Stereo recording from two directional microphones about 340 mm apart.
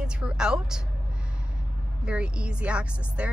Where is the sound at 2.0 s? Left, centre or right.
Centre.